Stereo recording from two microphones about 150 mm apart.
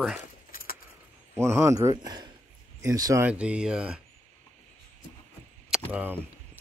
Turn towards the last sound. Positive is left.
turn(degrees=-10)  # may be behind; listen again after turning